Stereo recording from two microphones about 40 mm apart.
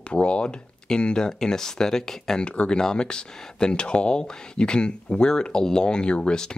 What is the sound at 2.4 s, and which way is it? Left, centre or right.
Speech, left.